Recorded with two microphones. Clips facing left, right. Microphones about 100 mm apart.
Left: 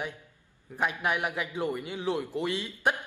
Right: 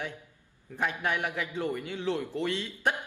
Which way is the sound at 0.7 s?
15° left (ahead or behind).